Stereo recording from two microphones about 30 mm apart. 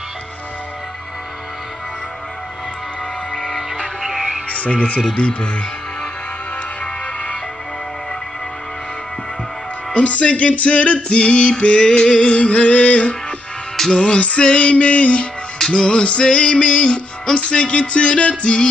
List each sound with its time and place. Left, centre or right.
3.8 s music: centre
4.5 s music: left
5.1 s music: left
9.9 s music: left
15.7 s music: left